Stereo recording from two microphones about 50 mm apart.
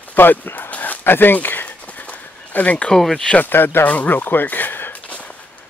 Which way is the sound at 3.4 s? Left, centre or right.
Left.